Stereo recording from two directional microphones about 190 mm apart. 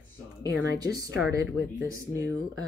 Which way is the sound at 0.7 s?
20° right (ahead or behind).